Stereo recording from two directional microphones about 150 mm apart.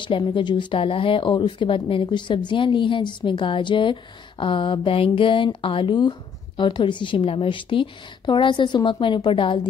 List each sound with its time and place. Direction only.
0.0 s speech: 30° left (ahead or behind)